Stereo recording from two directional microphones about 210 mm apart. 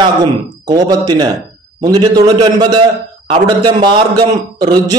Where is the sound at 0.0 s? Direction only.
20° right (ahead or behind).